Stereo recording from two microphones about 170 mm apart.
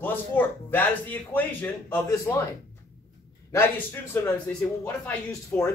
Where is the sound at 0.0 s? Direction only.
10° left (ahead or behind).